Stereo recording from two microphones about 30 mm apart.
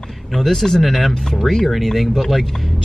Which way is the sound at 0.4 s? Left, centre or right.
Centre.